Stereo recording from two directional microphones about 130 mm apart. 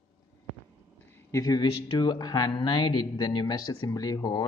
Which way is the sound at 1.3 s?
30° left (ahead or behind).